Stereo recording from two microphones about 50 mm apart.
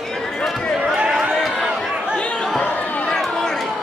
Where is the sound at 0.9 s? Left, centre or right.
Centre.